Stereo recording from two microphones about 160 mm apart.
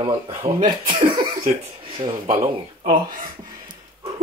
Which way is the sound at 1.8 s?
35° right (ahead or behind).